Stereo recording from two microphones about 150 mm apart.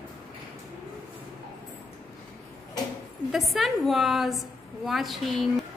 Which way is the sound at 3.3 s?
Centre (ahead or behind).